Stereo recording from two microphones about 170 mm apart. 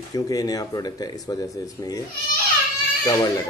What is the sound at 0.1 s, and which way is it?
Speech, 20° left (ahead or behind).